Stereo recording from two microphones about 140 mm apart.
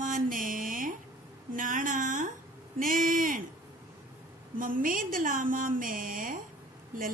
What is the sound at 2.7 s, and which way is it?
Speech, 80° right.